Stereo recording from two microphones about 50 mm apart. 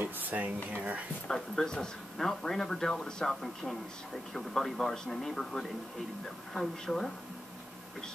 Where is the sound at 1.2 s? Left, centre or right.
Centre.